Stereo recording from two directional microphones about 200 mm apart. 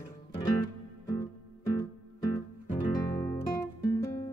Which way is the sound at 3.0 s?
15° left (ahead or behind).